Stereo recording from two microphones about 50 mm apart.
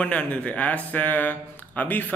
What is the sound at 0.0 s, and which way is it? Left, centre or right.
Speech, left.